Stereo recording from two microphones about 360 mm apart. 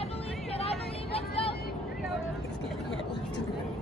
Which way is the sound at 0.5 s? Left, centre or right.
Centre.